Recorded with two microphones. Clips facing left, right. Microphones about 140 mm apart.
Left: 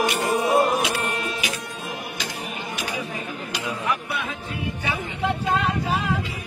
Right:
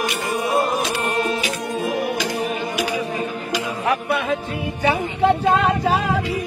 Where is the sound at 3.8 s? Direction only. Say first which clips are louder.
Right 7 dB; 70° right (ahead or behind).